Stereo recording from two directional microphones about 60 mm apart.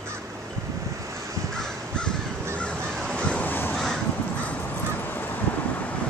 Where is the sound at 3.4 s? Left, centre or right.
Left.